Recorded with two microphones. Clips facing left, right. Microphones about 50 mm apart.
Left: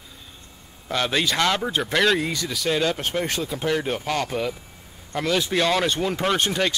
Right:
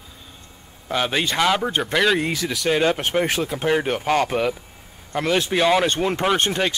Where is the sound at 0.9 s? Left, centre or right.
Centre.